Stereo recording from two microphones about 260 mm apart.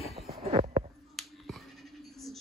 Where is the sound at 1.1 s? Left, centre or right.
Centre.